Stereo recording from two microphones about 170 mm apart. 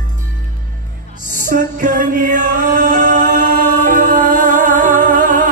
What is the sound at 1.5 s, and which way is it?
Music, 50° right (ahead or behind).